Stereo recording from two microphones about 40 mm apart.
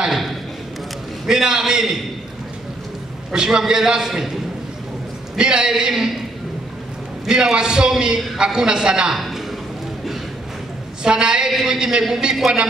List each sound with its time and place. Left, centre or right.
0.0 s a sound: centre
1.3 s a man's voice: centre
3.3 s a man's voice: centre
5.4 s a man's voice: centre
7.2 s a man's voice: centre
9.1 s a sound: centre
11.1 s a man's voice: centre